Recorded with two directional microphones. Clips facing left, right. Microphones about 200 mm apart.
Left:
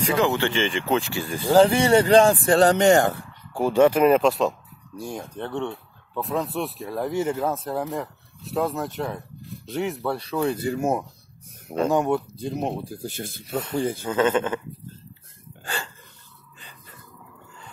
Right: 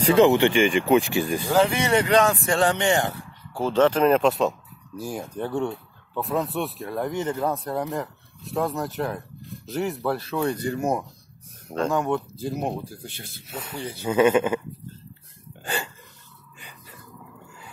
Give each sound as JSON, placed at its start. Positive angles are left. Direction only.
{"t": 0.0, "sound": "speech", "side_deg": -25}
{"t": 1.5, "sound": "speech", "side_deg": 30}
{"t": 3.5, "sound": "speech", "side_deg": 10}
{"t": 11.9, "sound": "speech", "side_deg": 15}
{"t": 12.4, "sound": "speech", "side_deg": 0}
{"t": 13.0, "sound": "speech", "side_deg": 45}
{"t": 14.0, "sound": "speech", "side_deg": -10}
{"t": 15.6, "sound": "a sound", "side_deg": -15}